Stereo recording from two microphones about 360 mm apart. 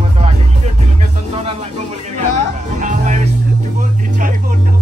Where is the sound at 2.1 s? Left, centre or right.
Centre.